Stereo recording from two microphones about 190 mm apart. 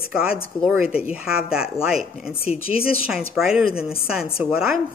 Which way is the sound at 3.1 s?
5° right (ahead or behind).